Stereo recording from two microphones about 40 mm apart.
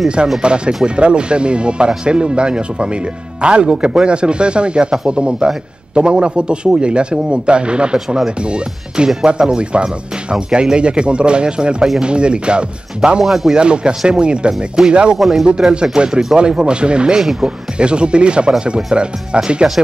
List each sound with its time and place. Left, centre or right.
0.4 s speech: right
13.2 s speech: centre
13.6 s speech: right
15.1 s speech: centre
15.7 s speech: right
17.2 s speech: centre
17.7 s speech: right